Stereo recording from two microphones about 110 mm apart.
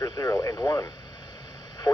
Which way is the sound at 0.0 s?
35° left (ahead or behind).